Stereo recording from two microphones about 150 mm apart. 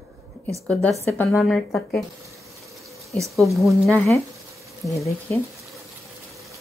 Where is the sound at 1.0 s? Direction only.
20° left (ahead or behind).